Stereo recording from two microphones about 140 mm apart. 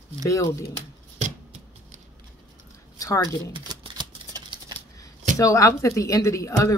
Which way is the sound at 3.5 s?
35° right (ahead or behind).